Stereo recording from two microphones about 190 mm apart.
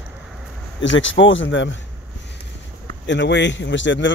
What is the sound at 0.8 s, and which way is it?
Speech, 80° left.